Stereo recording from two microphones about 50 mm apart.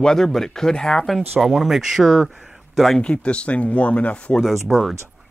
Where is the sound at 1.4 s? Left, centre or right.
Centre.